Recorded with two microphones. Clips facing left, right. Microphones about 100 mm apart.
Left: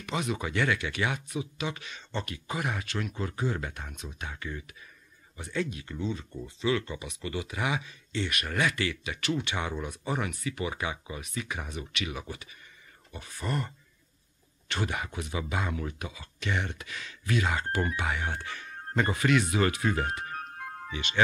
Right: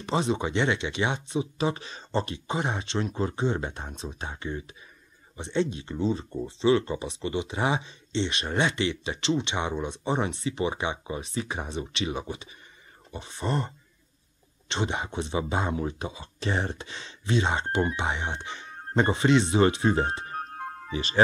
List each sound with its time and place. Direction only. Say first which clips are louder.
0.0 s speech: right 5 dB; 30° right (ahead or behind)